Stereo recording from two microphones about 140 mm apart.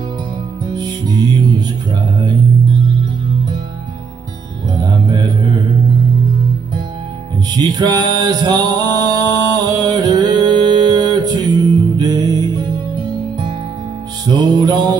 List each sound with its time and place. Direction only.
0.7 s music: 30° right (ahead or behind)
4.7 s music: 30° right (ahead or behind)
7.5 s music: 25° right (ahead or behind)